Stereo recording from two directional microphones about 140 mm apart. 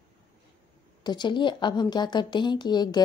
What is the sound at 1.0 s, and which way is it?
A woman's voice, 30° left (ahead or behind).